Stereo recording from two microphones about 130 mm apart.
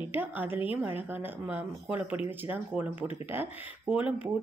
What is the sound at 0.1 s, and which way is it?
A woman's voice, 15° right (ahead or behind).